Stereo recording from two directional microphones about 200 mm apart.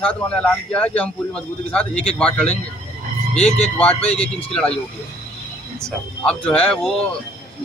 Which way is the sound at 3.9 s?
30° left (ahead or behind).